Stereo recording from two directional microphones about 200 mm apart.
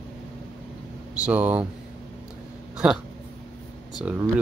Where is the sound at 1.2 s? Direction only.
10° right (ahead or behind).